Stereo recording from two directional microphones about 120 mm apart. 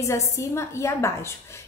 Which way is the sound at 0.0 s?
25° left (ahead or behind).